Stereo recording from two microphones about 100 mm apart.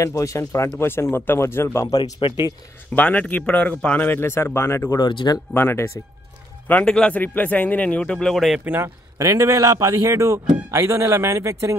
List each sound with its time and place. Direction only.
0.0 s speech: 30° left (ahead or behind)
2.1 s speech: 55° left (ahead or behind)
2.9 s speech: 15° left (ahead or behind); by 5.0 s 30° left (ahead or behind)
5.0 s speech: 45° left (ahead or behind)
5.5 s speech: 25° left (ahead or behind)
6.7 s speech: 10° left (ahead or behind)
8.5 s speech: 20° right (ahead or behind)
9.2 s speech: 35° right (ahead or behind)